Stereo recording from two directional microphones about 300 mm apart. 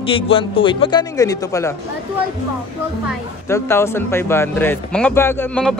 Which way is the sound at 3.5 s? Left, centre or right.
Centre.